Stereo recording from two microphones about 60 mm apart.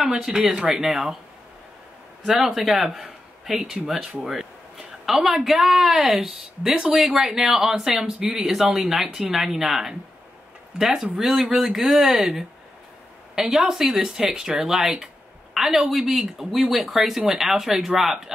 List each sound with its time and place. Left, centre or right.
0.5 s speech: centre
2.2 s a man's voice: centre